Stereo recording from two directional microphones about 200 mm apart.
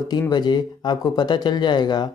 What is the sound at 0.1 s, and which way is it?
Speech, 20° left (ahead or behind).